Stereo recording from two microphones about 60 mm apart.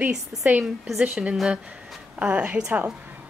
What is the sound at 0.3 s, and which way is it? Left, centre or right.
A woman's voice, centre.